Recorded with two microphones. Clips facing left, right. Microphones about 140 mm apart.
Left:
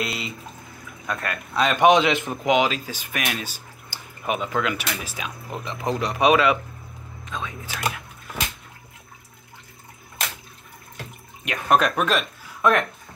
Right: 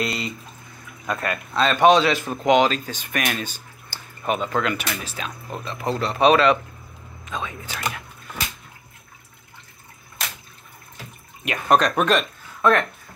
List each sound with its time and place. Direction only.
0.0 s speech: centre (ahead or behind)
1.5 s speech: 15° left (ahead or behind)
2.4 s speech: 5° left (ahead or behind)
7.2 s speech: centre (ahead or behind)
11.4 s speech: centre (ahead or behind)
12.6 s speech: 15° left (ahead or behind)